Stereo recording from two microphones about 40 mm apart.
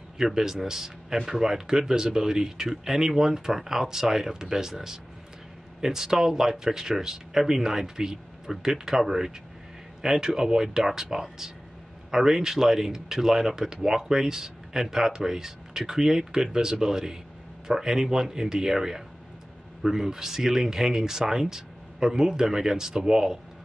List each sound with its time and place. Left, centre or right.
0.2 s speech: centre